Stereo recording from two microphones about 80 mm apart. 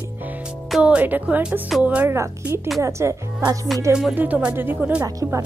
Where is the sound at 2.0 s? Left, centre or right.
Right.